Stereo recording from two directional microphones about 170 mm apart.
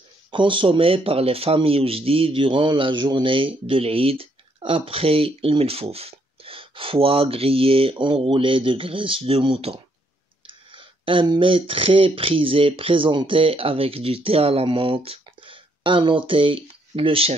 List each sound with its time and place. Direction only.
0.3 s speech: 30° right (ahead or behind)